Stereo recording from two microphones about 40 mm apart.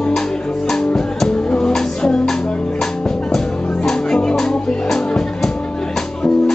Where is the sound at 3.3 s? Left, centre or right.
Centre.